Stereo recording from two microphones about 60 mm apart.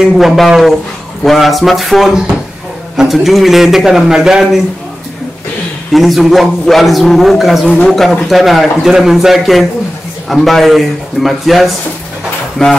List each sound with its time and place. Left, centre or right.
0.0 s a man's voice: centre
5.9 s a man's voice: centre
12.6 s speech: centre